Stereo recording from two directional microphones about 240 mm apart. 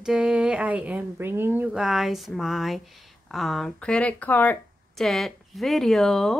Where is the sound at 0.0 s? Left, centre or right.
Centre.